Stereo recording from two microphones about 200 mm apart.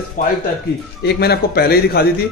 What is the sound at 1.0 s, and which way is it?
A man's voice, 55° left (ahead or behind).